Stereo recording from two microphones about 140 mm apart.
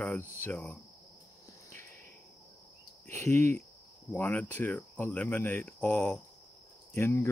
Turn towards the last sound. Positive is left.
turn(degrees=15)  # may be behind; listen again after turning